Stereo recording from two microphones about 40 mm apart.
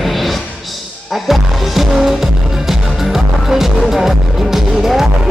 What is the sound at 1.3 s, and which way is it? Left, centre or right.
Music, centre.